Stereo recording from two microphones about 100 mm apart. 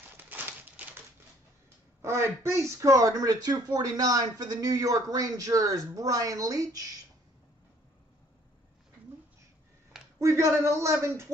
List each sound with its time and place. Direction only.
0.2 s a sound: 20° right (ahead or behind)
2.0 s speech: 25° right (ahead or behind)
10.1 s speech: 30° right (ahead or behind)